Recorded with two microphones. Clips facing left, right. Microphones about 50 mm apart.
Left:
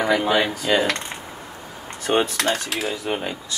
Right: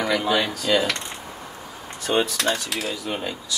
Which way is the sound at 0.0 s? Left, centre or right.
Left.